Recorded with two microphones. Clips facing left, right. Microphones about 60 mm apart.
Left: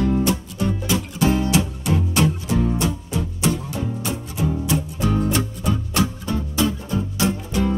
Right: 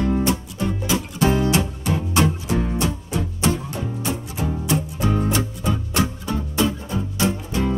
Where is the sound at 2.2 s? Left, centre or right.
Right.